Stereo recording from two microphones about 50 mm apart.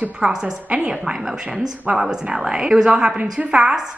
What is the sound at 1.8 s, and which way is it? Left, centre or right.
Speech, right.